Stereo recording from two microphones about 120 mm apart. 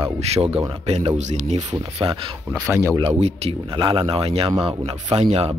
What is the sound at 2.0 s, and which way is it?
Speech, 50° right (ahead or behind).